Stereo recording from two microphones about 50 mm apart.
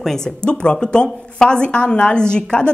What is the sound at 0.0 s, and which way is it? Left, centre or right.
Speech, centre.